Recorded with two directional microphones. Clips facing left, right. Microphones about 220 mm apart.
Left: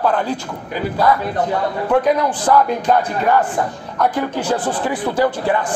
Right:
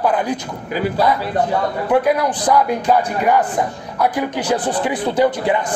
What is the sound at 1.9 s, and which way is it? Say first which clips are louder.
Speech: even; 10° right (ahead or behind).